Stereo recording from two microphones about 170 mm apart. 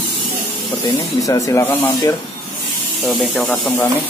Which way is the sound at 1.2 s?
20° left (ahead or behind).